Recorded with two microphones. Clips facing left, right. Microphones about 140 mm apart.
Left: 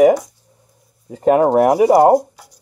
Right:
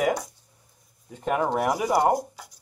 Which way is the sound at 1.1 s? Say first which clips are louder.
Left 12 dB; 75° left (ahead or behind).